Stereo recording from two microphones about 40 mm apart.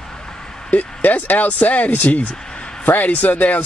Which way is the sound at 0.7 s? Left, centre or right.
Left.